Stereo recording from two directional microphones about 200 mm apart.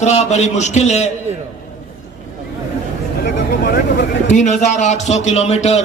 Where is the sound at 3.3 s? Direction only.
60° left (ahead or behind).